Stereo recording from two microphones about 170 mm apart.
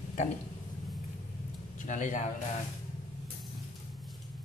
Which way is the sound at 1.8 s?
50° left (ahead or behind).